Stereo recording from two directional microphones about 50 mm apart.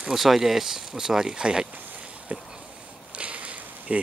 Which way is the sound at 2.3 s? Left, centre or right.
Right.